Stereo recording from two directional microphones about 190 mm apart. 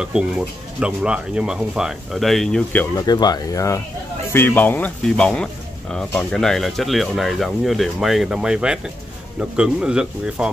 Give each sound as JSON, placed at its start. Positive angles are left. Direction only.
{"t": 0.0, "sound": "speech", "side_deg": -5}
{"t": 3.1, "sound": "speech", "side_deg": 20}